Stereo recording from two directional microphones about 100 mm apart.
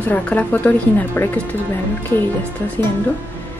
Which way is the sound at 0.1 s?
15° left (ahead or behind).